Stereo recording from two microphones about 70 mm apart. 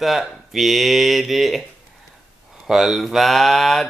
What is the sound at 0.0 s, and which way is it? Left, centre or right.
Speech, centre.